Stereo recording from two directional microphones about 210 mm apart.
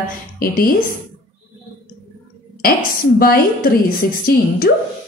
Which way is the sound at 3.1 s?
45° left (ahead or behind).